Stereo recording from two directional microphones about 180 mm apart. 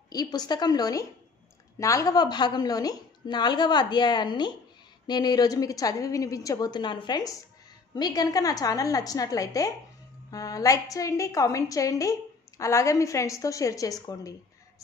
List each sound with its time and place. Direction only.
0.1 s a woman's voice: 20° left (ahead or behind)